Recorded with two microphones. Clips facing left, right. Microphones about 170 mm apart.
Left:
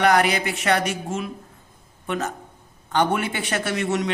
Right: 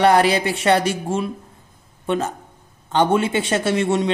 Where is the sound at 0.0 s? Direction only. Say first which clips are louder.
Right 4 dB; 30° right (ahead or behind).